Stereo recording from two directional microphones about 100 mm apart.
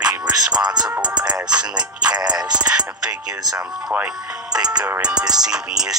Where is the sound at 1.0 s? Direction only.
45° right (ahead or behind).